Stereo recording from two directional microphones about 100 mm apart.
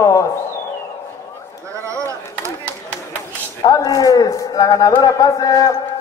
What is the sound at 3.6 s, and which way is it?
A man's voice, 35° left (ahead or behind).